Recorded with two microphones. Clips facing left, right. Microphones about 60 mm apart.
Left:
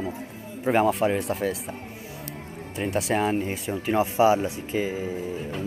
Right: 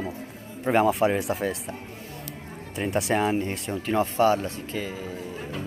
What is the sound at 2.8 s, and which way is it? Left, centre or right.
Speech, centre.